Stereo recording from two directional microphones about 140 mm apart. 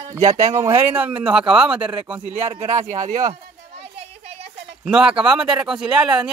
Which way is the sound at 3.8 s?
50° right (ahead or behind).